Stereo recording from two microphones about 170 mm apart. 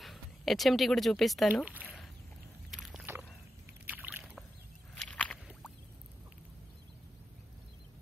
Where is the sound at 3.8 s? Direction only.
10° right (ahead or behind).